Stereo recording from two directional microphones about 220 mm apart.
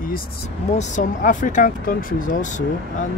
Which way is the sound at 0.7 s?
30° left (ahead or behind).